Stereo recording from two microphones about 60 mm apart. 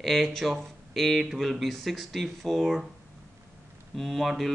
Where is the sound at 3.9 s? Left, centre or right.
Centre.